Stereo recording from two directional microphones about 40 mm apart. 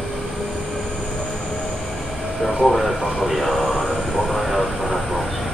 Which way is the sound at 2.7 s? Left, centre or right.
Centre.